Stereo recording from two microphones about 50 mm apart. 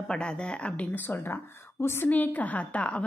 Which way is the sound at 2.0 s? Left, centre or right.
Left.